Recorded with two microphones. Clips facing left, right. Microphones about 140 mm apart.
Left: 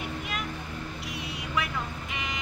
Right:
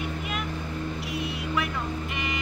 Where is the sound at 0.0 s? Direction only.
Centre (ahead or behind).